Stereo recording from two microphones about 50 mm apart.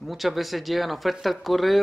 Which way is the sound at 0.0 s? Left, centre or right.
Centre.